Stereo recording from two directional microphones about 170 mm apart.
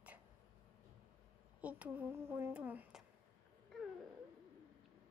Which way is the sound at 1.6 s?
10° right (ahead or behind).